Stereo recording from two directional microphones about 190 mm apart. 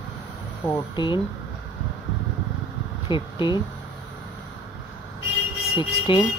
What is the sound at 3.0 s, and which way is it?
Speech, 25° left (ahead or behind).